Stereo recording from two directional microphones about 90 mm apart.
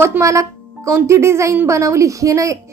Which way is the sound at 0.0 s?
30° right (ahead or behind).